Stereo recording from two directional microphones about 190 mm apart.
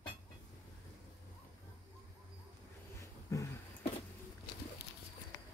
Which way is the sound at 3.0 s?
15° left (ahead or behind).